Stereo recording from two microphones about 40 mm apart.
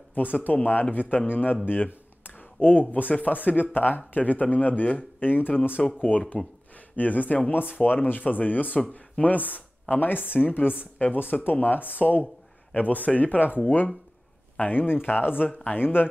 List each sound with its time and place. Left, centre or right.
0.1 s speech: left
5.9 s speech: left
10.8 s speech: left
11.1 s speech: left
14.6 s speech: left
15.4 s speech: left
15.8 s speech: left